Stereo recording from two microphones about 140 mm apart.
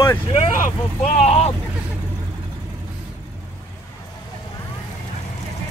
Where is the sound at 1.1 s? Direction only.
50° left (ahead or behind).